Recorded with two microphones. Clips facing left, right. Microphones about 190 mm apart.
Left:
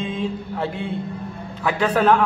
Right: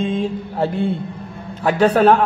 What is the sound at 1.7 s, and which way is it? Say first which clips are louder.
Speech: right 5 dB; 40° right (ahead or behind).